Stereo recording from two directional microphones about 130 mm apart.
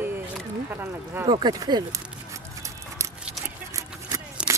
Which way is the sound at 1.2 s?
30° right (ahead or behind).